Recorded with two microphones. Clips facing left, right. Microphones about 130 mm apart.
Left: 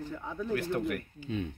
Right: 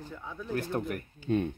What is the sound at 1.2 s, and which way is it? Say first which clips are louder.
Speech: right 8 dB; 55° right (ahead or behind).